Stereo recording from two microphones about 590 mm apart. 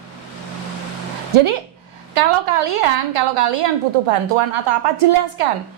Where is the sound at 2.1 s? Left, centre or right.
Right.